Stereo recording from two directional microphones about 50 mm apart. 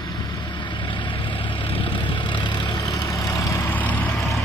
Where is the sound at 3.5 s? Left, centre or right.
Left.